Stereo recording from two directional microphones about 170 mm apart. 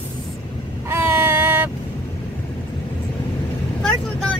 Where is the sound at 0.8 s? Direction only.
15° right (ahead or behind).